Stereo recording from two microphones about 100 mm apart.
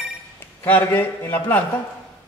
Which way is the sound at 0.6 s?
20° left (ahead or behind).